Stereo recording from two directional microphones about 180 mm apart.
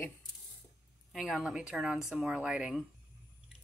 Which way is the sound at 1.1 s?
Centre (ahead or behind).